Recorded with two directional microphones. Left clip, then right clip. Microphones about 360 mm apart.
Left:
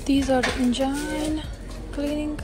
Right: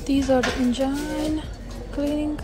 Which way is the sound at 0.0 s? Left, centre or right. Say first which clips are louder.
Right 1 dB; centre.